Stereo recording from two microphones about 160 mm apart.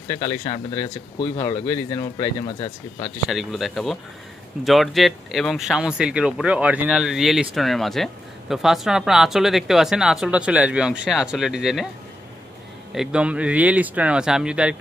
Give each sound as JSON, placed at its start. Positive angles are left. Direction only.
{"t": 0.1, "sound": "speech", "side_deg": 25}
{"t": 3.3, "sound": "speech", "side_deg": 0}
{"t": 12.9, "sound": "speech", "side_deg": -5}